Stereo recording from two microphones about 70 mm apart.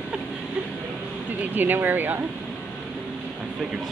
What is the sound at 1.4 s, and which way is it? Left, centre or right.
Speech, right.